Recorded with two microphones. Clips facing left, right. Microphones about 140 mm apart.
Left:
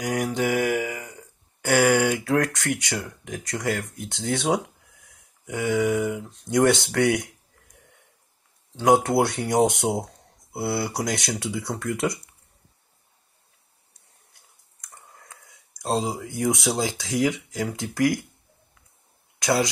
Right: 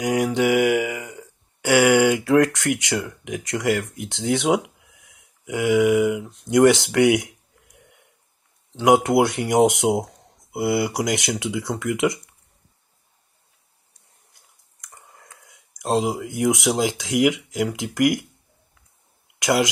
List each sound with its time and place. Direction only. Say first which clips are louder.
0.0 s mantra: right 5 dB; 20° right (ahead or behind)
1.6 s speech: right 4 dB; 20° right (ahead or behind)
8.8 s speech: right 3 dB; 15° right (ahead or behind)
16.2 s speech: right 4 dB; 15° right (ahead or behind)